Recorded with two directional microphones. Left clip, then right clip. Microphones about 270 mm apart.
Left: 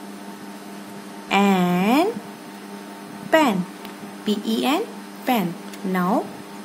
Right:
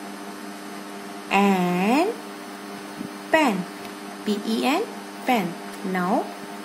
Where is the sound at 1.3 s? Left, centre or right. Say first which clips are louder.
Left 1 dB; centre.